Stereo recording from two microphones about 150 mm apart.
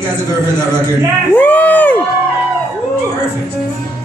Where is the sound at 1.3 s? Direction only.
10° left (ahead or behind).